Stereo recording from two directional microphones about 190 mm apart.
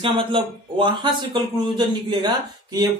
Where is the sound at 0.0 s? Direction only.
25° right (ahead or behind).